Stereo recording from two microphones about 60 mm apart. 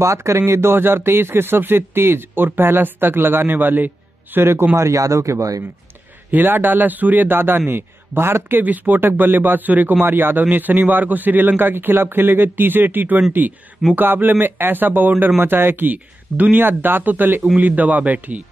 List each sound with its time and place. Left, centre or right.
0.0 s speech: right
0.5 s speech: right
4.7 s speech: right
6.3 s a man's voice: right